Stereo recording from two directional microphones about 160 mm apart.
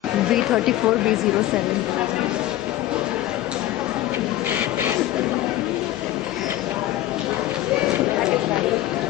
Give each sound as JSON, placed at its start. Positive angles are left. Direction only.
{"t": 0.3, "sound": "a woman's voice", "side_deg": -5}